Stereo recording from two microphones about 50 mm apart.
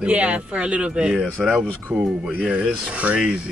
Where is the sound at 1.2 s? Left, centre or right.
Centre.